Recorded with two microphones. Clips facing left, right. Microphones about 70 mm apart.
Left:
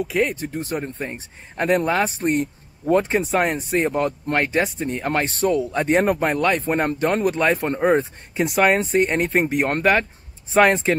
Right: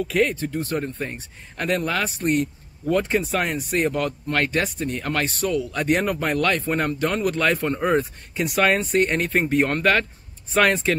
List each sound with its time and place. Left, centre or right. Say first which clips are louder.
0.0 s speech: even; centre